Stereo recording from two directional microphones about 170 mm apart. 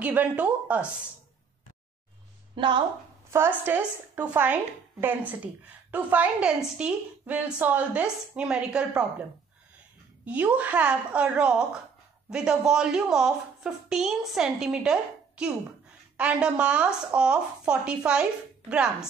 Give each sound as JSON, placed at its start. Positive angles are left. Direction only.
{"t": 0.0, "sound": "a woman's voice", "side_deg": -10}
{"t": 2.5, "sound": "a woman's voice", "side_deg": -30}
{"t": 3.3, "sound": "a woman's voice", "side_deg": -15}
{"t": 10.2, "sound": "a woman's voice", "side_deg": -10}